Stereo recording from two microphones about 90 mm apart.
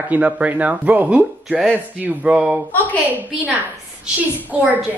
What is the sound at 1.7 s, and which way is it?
Speech, 15° right (ahead or behind).